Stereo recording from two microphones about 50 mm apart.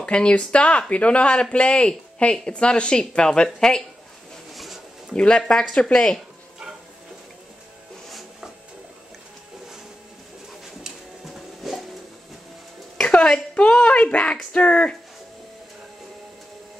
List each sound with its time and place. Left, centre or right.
0.0 s speech: left
5.1 s speech: centre
8.1 s printer: centre
11.6 s a sound: centre
13.0 s a sound: centre
13.6 s speech: left